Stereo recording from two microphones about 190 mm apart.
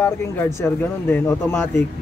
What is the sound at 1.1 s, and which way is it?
Speech, 10° left (ahead or behind).